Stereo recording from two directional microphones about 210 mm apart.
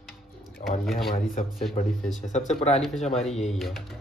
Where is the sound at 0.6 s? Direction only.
Centre (ahead or behind).